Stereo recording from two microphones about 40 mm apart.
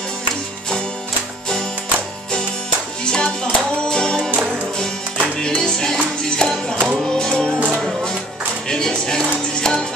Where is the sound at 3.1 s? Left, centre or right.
Centre.